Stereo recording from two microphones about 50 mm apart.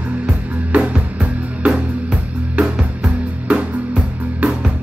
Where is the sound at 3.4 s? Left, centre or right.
Right.